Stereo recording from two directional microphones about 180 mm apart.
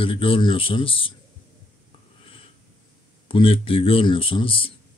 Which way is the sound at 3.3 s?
30° left (ahead or behind).